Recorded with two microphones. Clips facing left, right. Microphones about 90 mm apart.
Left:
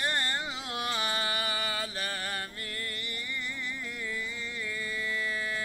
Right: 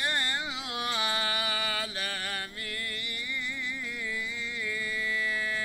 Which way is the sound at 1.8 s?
35° left (ahead or behind).